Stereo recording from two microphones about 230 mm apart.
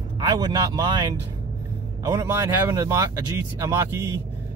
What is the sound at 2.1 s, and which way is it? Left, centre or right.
Speech, centre.